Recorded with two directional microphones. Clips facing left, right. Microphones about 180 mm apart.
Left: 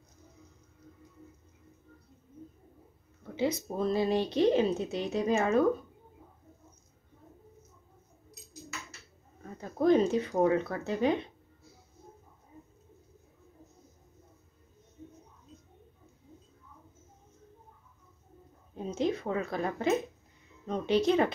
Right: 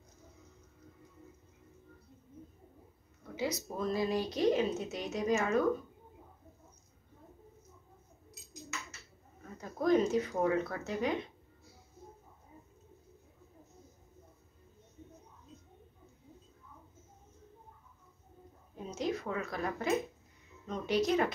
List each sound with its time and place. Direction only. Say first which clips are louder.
3.3 s speech: left 5 dB; 30° left (ahead or behind)
9.6 s speech: left 4 dB; 30° left (ahead or behind)
18.9 s speech: left 5 dB; 30° left (ahead or behind)